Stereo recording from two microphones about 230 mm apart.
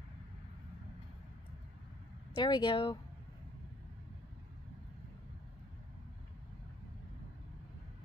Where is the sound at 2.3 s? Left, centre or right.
Centre.